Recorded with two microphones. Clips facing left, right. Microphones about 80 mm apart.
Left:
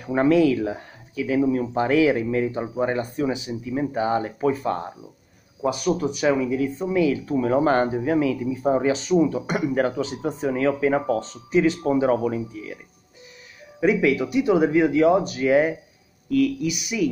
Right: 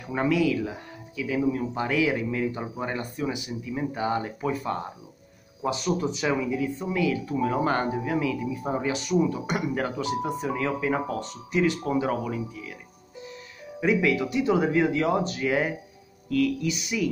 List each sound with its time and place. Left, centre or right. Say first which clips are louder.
0.0 s speech: left 6 dB; left
1.8 s speech: left 8 dB; left
5.6 s speech: left 4 dB; centre
6.9 s speech: left 5 dB; left
13.7 s speech: left 4 dB; centre